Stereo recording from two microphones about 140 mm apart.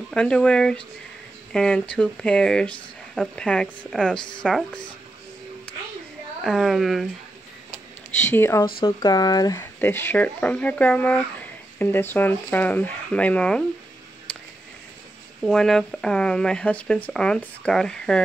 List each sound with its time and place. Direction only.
0.1 s speech: 5° left (ahead or behind)
6.4 s speech: centre (ahead or behind)
8.2 s speech: 15° left (ahead or behind)
8.8 s speech: 30° left (ahead or behind)
9.6 s speech: 15° left (ahead or behind)
14.3 s a sound: 10° left (ahead or behind)
15.4 s speech: 5° left (ahead or behind)